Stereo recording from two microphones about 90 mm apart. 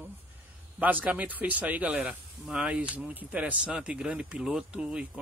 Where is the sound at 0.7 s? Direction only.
20° right (ahead or behind).